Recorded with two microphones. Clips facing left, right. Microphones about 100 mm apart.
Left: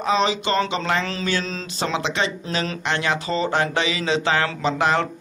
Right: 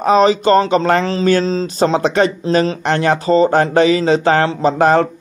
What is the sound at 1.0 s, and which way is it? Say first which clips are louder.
Speech: right 11 dB; 30° right (ahead or behind).